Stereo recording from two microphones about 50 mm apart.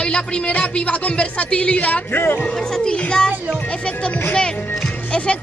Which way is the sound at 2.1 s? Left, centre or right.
Left.